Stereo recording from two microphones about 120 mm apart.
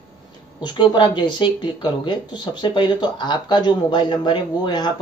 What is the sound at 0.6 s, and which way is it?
Speech, 40° left (ahead or behind).